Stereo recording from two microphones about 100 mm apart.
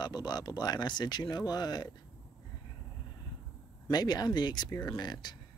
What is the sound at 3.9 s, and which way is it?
Speech, 40° left (ahead or behind).